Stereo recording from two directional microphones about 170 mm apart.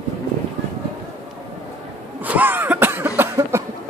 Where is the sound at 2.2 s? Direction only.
10° right (ahead or behind).